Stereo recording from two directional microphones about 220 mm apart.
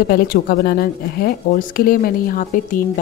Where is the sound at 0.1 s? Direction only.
45° left (ahead or behind).